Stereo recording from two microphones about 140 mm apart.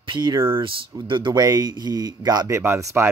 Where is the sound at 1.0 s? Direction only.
35° right (ahead or behind).